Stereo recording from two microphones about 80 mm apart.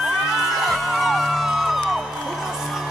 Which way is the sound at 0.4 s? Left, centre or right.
Centre.